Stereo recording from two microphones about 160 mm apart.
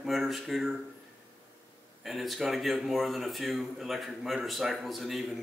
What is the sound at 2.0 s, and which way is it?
Speech, centre (ahead or behind).